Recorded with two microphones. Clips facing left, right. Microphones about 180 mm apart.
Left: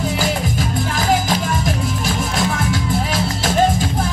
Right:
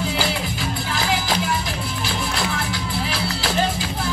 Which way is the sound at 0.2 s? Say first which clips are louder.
Left 4 dB; 45° left (ahead or behind).